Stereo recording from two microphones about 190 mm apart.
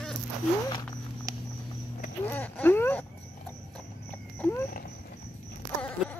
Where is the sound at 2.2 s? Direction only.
10° left (ahead or behind).